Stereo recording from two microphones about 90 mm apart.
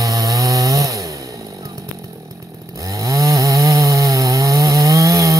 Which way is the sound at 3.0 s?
40° right (ahead or behind).